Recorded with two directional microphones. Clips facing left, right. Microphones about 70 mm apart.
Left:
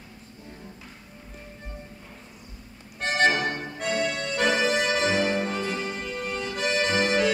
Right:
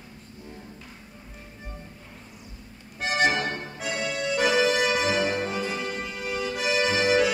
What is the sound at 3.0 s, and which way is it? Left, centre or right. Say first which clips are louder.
Accordion: left 1 dB; centre.